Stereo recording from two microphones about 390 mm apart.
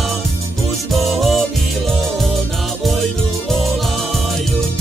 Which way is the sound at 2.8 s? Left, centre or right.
Centre.